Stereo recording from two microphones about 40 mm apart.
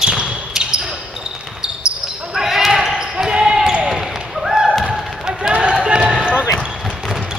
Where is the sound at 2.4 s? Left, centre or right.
Centre.